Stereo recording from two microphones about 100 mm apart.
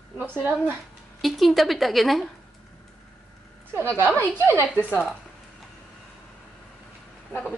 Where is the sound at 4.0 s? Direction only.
25° right (ahead or behind).